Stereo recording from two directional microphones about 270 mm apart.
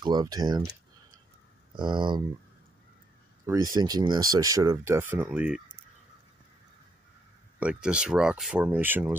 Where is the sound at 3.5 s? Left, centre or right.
Centre.